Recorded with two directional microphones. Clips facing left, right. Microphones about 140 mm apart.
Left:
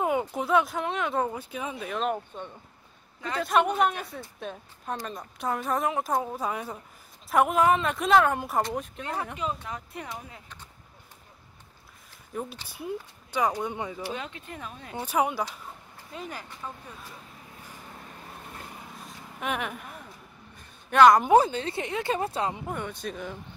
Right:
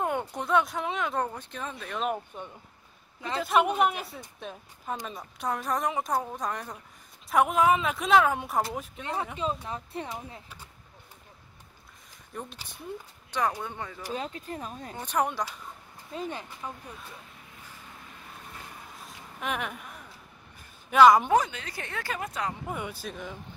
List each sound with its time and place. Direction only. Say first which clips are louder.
0.0 s speech: left 3 dB; 5° left (ahead or behind)
2.0 s speech: left 1 dB; 5° right (ahead or behind)
3.2 s speech: left 1 dB; 25° right (ahead or behind)
3.4 s speech: even; 5° right (ahead or behind)
9.9 s speech: right 3 dB; 30° right (ahead or behind)
12.3 s speech: left 5 dB; 5° left (ahead or behind)
14.1 s speech: right 3 dB; 35° right (ahead or behind)
15.0 s speech: left 2 dB; 10° left (ahead or behind)
16.1 s speech: right 3 dB; 30° right (ahead or behind)
19.0 s vehicle: left 2 dB; centre (ahead or behind)
20.9 s speech: even; centre (ahead or behind)
21.3 s speech: left 5 dB; 30° left (ahead or behind)
22.7 s speech: left 2 dB; 5° right (ahead or behind)